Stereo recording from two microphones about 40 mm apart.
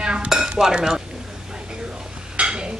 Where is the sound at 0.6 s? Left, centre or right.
Centre.